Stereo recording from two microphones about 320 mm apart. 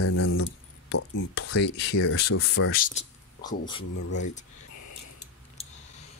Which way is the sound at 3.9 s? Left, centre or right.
Left.